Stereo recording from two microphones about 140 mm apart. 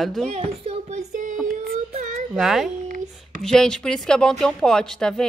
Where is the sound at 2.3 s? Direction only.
Centre (ahead or behind).